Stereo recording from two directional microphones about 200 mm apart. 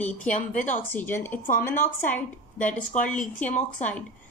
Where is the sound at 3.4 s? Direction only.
35° left (ahead or behind).